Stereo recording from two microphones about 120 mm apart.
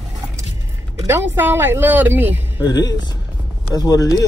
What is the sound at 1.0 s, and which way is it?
Speech, 20° right (ahead or behind).